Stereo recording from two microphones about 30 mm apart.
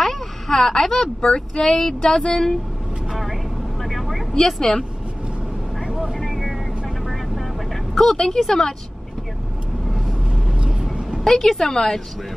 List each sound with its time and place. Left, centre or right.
0.0 s a sound: centre
1.2 s speech: left
2.0 s speech: left
3.8 s vehicle: centre
4.6 s speech: centre
6.2 s vehicle: centre
10.3 s vehicle: right
11.2 s a woman's voice: centre
11.5 s speech: left